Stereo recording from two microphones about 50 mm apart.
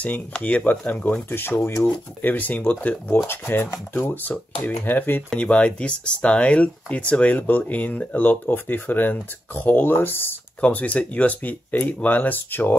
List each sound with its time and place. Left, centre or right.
0.0 s speech: left
1.3 s speech: left
2.2 s speech: left
3.3 s speech: left
4.1 s speech: left
5.4 s speech: left
10.6 s speech: left